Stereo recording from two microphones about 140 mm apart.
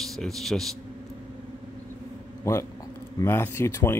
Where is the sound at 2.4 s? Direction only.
20° left (ahead or behind).